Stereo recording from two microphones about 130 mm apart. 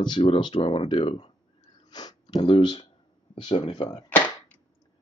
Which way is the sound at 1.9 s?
30° left (ahead or behind).